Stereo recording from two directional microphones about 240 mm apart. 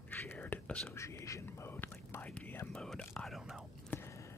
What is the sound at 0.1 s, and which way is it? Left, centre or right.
Whispering, centre.